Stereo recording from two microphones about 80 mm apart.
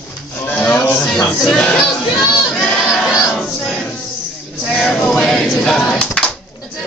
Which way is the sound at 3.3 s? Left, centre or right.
Centre.